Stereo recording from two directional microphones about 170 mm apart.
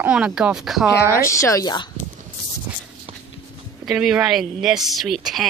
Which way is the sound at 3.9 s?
5° right (ahead or behind).